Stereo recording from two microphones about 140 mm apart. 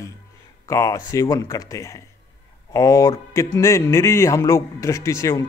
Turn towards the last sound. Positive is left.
turn(degrees=20)  # may be behind; listen again after turning